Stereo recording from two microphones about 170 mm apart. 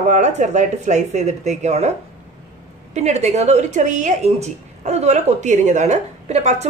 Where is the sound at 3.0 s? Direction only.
40° right (ahead or behind).